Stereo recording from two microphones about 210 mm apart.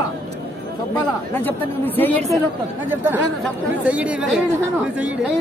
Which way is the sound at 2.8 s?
10° right (ahead or behind).